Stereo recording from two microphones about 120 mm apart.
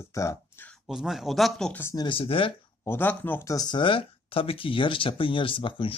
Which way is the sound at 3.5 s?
40° left (ahead or behind).